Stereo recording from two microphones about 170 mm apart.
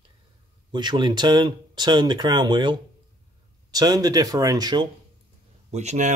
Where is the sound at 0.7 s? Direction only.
25° right (ahead or behind).